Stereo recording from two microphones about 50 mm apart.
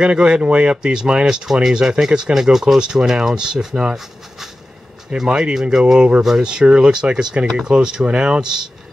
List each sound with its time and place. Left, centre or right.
0.0 s speech: centre